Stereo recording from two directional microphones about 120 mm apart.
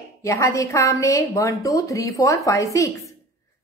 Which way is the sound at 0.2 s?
25° left (ahead or behind).